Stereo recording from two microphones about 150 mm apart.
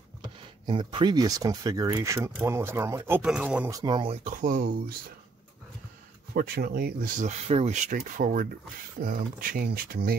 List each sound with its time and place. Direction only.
0.2 s speech: 35° right (ahead or behind); by 3.7 s 10° right (ahead or behind)
3.7 s speech: 30° right (ahead or behind)
4.2 s speech: 60° right (ahead or behind)
6.3 s speech: 80° right
7.2 s speech: 45° right (ahead or behind); by 10.1 s 90° right